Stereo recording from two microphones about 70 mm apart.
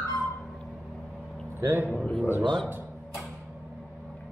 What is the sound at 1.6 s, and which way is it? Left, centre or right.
Speech, right.